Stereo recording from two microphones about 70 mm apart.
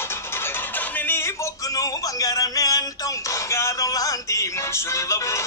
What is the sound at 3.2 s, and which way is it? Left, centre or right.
Music, left.